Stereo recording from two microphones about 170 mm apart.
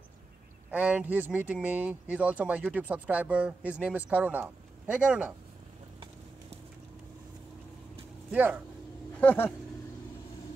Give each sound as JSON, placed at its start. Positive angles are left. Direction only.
{"t": 0.7, "sound": "speech", "side_deg": -10}
{"t": 8.3, "sound": "speech", "side_deg": -10}
{"t": 9.2, "sound": "vehicle", "side_deg": 10}